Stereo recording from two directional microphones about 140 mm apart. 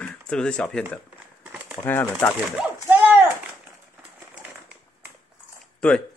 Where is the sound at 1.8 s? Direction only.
15° left (ahead or behind).